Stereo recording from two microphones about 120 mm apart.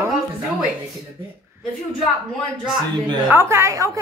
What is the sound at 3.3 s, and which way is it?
Speech, 20° right (ahead or behind).